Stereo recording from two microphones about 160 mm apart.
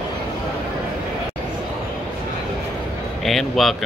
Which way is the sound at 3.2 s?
Centre (ahead or behind).